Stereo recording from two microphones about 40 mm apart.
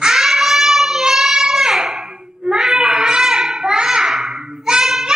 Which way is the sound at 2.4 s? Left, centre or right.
Centre.